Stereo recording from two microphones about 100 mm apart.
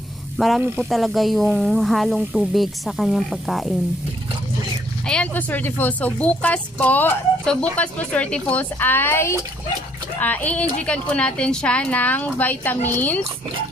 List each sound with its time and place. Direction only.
0.4 s speech: centre (ahead or behind)
5.0 s speech: 5° left (ahead or behind)
5.3 s a woman's voice: 20° left (ahead or behind)